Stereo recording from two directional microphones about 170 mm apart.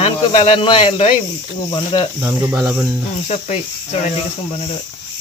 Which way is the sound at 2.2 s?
15° right (ahead or behind).